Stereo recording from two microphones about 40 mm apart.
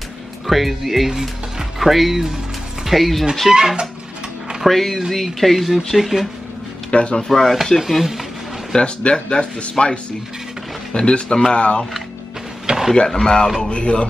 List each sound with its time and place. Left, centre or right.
0.5 s speech: centre
3.5 s speech: centre
4.6 s speech: centre
6.9 s speech: left
7.2 s speech: centre
7.9 s speech: centre
8.7 s speech: left
12.6 s drawer open or close: centre
12.9 s speech: centre
13.6 s speech: left